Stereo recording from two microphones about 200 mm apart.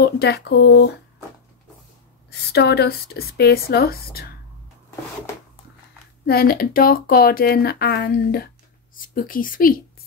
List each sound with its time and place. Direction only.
0.0 s speech: 55° left (ahead or behind)
2.5 s speech: 55° left (ahead or behind)
6.2 s speech: 50° left (ahead or behind)
8.9 s speech: 45° left (ahead or behind)